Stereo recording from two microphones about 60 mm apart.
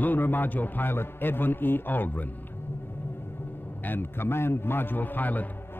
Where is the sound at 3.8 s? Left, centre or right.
Left.